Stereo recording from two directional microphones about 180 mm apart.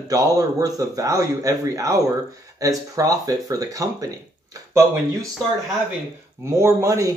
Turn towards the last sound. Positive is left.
turn(degrees=-15)  # may be behind; listen again after turning